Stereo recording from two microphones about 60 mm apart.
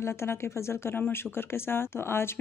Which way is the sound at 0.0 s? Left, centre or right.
Left.